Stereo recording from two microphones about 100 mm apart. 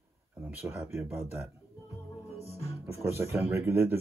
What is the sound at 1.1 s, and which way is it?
Speech, 25° right (ahead or behind).